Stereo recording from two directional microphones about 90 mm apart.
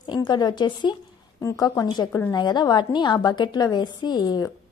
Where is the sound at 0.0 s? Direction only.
55° left (ahead or behind).